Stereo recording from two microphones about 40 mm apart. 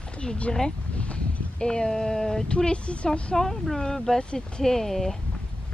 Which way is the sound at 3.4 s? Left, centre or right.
Centre.